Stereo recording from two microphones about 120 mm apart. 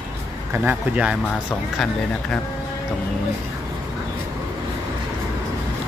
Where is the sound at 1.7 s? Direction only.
5° left (ahead or behind).